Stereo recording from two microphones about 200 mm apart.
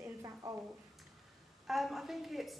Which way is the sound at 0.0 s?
15° right (ahead or behind).